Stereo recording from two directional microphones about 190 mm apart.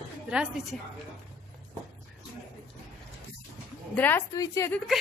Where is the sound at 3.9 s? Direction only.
10° left (ahead or behind).